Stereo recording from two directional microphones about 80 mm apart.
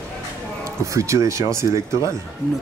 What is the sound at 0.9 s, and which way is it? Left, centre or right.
Speech, right.